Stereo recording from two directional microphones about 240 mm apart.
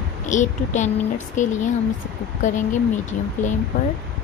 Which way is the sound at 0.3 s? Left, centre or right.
Left.